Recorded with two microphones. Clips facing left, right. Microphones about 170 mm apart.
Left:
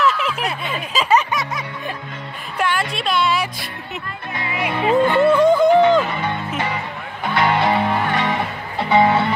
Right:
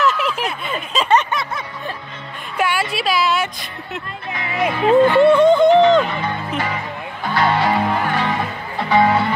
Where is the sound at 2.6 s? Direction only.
5° right (ahead or behind).